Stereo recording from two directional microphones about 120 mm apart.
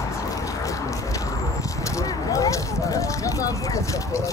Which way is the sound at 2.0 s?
30° left (ahead or behind).